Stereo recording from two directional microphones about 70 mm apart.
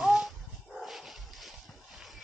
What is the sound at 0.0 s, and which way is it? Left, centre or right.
Dog, centre.